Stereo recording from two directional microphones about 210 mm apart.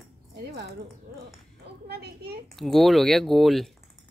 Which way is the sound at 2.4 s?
Centre (ahead or behind).